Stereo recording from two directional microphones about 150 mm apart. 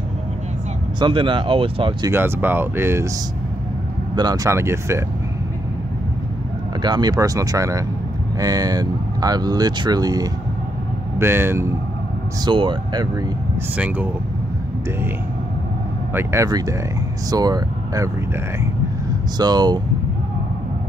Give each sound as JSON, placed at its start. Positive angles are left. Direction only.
{"t": 0.9, "sound": "speech", "side_deg": -30}
{"t": 2.0, "sound": "speech", "side_deg": -15}
{"t": 4.1, "sound": "speech", "side_deg": -30}
{"t": 6.8, "sound": "speech", "side_deg": -30}
{"t": 12.4, "sound": "speech", "side_deg": -30}
{"t": 13.7, "sound": "speech", "side_deg": -10}
{"t": 16.2, "sound": "speech", "side_deg": -15}
{"t": 19.3, "sound": "speech", "side_deg": -30}